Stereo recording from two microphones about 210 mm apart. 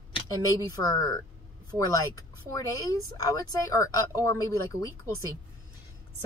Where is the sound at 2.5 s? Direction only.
15° left (ahead or behind).